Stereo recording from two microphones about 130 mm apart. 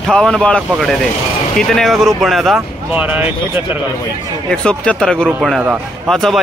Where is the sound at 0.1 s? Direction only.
5° left (ahead or behind).